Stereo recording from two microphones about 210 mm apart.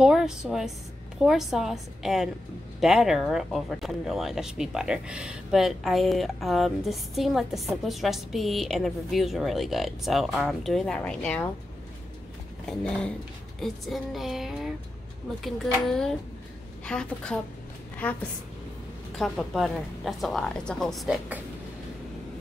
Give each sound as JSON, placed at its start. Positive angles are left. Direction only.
{"t": 0.0, "sound": "speech", "side_deg": 0}
{"t": 12.6, "sound": "a woman's voice", "side_deg": 5}